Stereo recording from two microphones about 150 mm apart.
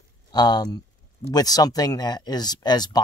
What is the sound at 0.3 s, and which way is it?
Speech, 25° left (ahead or behind).